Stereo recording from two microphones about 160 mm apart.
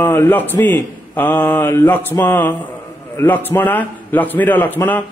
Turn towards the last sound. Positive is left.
turn(degrees=10)  # may be behind; listen again after turning